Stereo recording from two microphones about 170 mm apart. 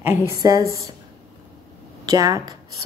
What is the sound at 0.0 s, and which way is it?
Speech, 15° right (ahead or behind).